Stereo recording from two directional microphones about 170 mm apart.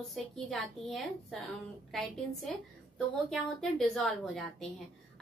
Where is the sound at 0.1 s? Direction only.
Centre (ahead or behind).